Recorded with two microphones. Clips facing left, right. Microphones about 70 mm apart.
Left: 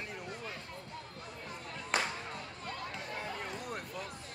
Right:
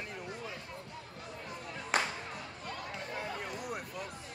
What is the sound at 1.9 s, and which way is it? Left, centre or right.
Music, right.